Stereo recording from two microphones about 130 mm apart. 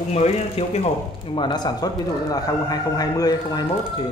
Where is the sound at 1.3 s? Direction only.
35° left (ahead or behind).